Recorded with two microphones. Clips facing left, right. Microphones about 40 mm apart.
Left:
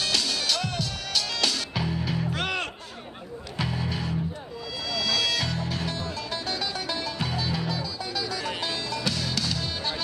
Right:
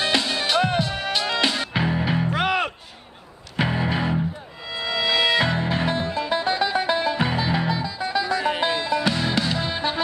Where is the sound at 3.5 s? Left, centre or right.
Right.